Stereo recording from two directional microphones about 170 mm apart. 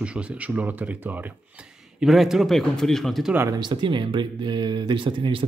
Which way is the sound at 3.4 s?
20° right (ahead or behind).